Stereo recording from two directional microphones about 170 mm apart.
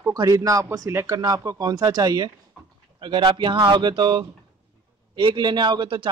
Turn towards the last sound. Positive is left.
turn(degrees=-30)  # may be behind; listen again after turning